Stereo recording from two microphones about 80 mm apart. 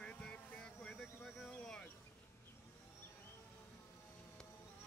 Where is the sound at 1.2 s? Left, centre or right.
Centre.